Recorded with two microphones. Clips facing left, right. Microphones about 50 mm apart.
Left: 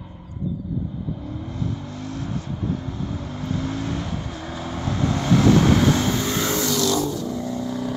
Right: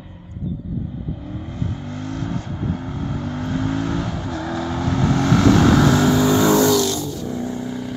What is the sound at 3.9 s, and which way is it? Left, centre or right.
Vehicle, right.